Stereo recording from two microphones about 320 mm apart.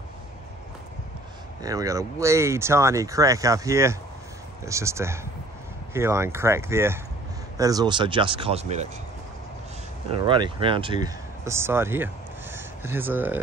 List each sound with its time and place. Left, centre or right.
1.6 s speech: centre
10.2 s speech: centre